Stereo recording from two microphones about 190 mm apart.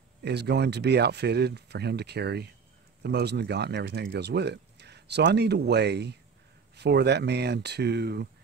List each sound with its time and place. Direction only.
0.2 s speech: 60° right (ahead or behind)